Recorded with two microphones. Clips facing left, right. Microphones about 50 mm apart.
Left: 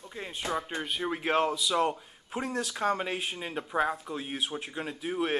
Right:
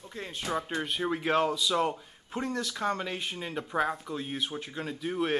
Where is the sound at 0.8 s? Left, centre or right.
Centre.